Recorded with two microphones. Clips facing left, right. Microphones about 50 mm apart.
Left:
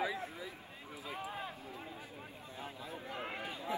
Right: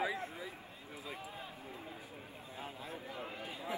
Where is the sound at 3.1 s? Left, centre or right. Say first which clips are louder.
Left 6 dB; left.